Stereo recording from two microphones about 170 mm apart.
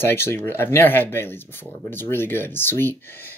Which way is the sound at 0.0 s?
15° left (ahead or behind).